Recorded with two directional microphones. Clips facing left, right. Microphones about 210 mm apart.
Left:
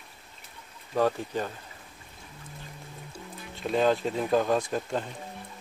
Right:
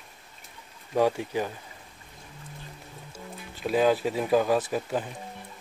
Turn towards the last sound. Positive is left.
turn(degrees=-5)  # may be behind; listen again after turning